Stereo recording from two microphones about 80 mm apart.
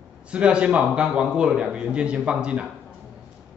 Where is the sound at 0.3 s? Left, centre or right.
Centre.